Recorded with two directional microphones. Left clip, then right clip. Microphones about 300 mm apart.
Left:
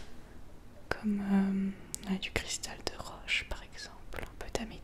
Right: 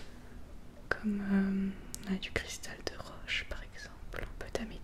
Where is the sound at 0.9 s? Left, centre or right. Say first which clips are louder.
Even; centre.